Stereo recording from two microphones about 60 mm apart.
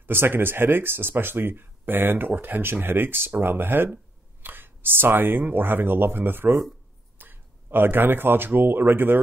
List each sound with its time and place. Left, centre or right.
0.0 s speech: right